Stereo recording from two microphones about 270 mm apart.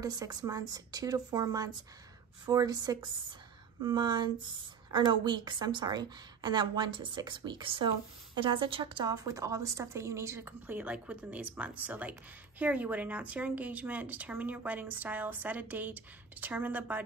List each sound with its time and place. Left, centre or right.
0.0 s a woman's voice: centre